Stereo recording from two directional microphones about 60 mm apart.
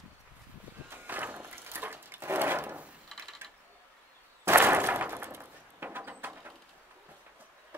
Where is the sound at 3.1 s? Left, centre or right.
Centre.